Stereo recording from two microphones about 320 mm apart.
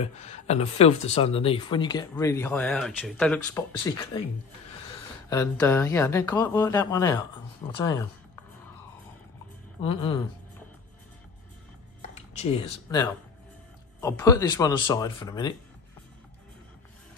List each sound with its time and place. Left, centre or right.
0.0 s speech: centre
5.3 s speech: centre
9.8 s speech: centre
12.4 s speech: centre